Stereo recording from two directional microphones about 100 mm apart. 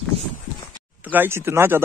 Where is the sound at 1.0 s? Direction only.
20° right (ahead or behind).